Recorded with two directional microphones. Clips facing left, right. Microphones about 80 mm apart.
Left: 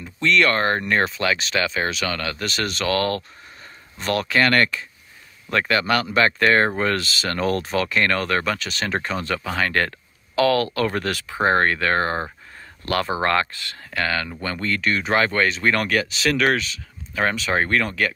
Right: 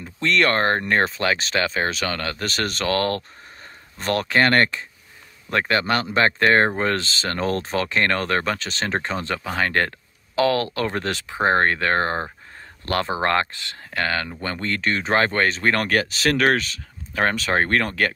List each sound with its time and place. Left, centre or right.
0.0 s speech: right
13.9 s speech: right